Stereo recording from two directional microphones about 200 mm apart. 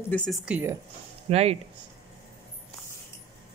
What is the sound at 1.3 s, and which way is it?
Speech, 30° right (ahead or behind).